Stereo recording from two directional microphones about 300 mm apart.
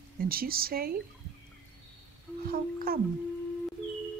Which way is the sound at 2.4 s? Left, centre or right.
Right.